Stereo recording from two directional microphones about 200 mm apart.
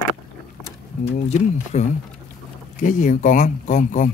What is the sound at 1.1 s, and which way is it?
Speech, 35° left (ahead or behind).